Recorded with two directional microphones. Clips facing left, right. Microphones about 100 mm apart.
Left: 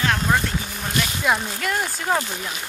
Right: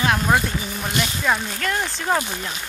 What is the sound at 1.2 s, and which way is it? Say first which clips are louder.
Speech: left 1 dB; 5° left (ahead or behind).